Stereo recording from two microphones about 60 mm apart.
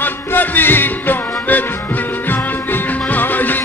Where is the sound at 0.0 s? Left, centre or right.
Left.